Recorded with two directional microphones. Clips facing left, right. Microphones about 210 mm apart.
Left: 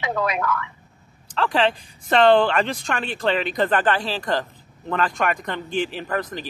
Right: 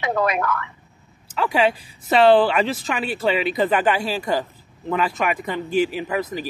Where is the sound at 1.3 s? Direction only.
10° right (ahead or behind).